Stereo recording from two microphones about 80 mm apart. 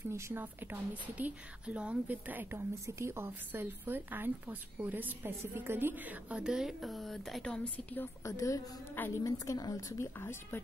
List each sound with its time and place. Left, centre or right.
0.3 s a woman's voice: right
2.7 s a woman's voice: right; by 8.1 s left
8.2 s a woman's voice: left
10.1 s speech: left